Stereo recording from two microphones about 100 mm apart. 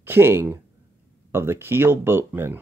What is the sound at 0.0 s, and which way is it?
Speech, 25° right (ahead or behind).